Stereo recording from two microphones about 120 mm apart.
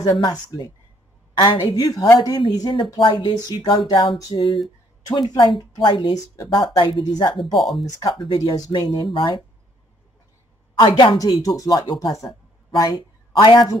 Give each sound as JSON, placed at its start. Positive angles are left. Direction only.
{"t": 0.1, "sound": "a woman's voice", "side_deg": 40}
{"t": 7.5, "sound": "speech", "side_deg": 0}
{"t": 8.1, "sound": "a woman's voice", "side_deg": 45}
{"t": 10.7, "sound": "a woman's voice", "side_deg": 40}
{"t": 11.1, "sound": "a woman's voice", "side_deg": 30}